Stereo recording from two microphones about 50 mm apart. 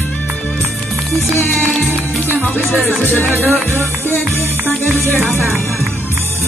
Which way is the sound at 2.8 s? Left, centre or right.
Left.